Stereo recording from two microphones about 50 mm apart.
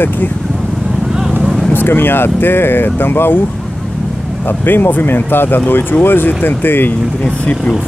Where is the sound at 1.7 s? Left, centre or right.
Left.